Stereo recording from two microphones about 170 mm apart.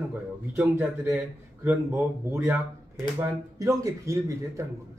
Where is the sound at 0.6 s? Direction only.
15° right (ahead or behind).